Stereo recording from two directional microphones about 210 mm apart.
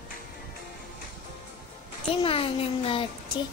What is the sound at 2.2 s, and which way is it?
Speech, 25° left (ahead or behind).